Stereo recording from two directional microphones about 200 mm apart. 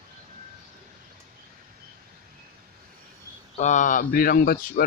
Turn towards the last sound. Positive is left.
turn(degrees=50)  # may be behind; listen again after turning